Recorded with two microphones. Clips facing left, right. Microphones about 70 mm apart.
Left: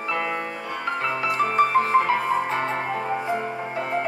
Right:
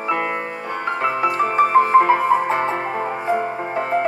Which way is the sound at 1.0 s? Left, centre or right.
Centre.